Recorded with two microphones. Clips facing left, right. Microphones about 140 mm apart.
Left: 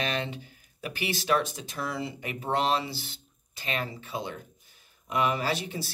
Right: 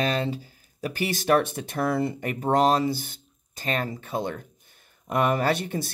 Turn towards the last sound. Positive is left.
turn(degrees=-50)  # may be behind; listen again after turning